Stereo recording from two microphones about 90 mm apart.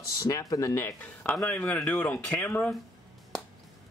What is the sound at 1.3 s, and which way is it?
Speech, 15° left (ahead or behind).